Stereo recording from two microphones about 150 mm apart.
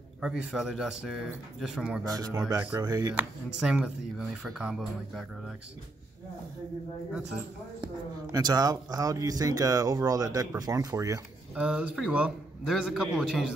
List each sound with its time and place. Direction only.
0.2 s a man's voice: 5° right (ahead or behind)
2.5 s speech: 25° right (ahead or behind)
3.6 s a man's voice: 5° right (ahead or behind)
7.8 s speech: 25° right (ahead or behind)
11.5 s a man's voice: 5° right (ahead or behind)